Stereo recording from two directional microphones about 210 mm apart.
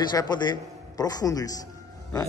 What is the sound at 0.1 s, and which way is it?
A man's voice, 20° left (ahead or behind).